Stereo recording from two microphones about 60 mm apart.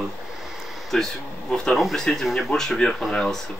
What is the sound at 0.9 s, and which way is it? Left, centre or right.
Speech, centre.